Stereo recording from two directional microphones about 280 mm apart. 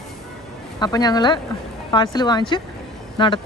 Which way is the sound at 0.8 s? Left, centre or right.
Centre.